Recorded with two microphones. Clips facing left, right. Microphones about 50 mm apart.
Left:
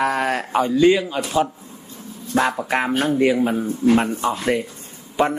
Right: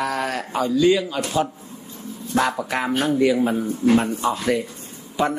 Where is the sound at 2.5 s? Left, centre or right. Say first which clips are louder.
Left 2 dB; left.